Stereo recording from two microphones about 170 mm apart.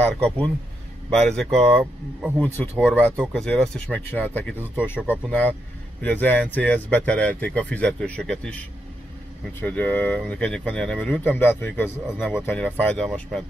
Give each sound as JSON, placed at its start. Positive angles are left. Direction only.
{"t": 1.1, "sound": "speech", "side_deg": 0}